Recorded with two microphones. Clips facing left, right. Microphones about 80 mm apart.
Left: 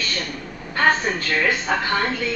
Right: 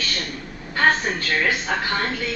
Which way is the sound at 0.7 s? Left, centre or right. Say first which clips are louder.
Left 1 dB; centre.